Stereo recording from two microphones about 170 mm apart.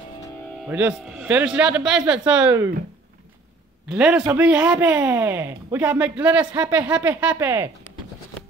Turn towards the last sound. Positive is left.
turn(degrees=-15)  # may be behind; listen again after turning